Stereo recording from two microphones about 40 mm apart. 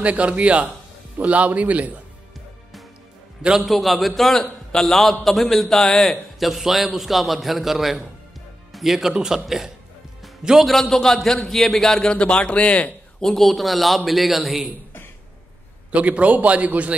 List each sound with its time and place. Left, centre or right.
0.0 s a man's voice: right
0.7 s a man's voice: right
3.6 s a man's voice: centre
6.5 s a man's voice: centre
10.6 s a man's voice: centre
12.1 s speech: left
13.2 s a man's voice: centre
15.9 s a man's voice: right